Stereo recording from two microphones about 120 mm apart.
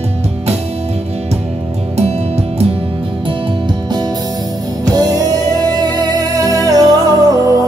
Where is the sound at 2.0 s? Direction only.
60° right (ahead or behind).